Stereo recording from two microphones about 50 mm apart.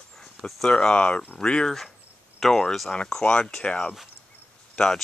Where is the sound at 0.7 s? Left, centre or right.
Centre.